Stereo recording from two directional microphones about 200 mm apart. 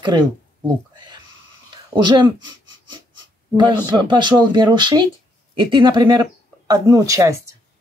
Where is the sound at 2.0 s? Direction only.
20° right (ahead or behind).